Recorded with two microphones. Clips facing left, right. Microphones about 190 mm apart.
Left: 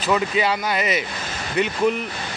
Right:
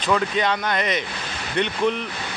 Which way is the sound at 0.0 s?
5° left (ahead or behind).